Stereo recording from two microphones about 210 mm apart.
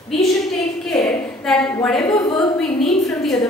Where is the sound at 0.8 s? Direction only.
5° left (ahead or behind).